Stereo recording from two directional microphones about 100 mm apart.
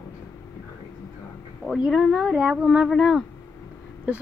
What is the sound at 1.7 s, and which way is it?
Speech, 5° right (ahead or behind).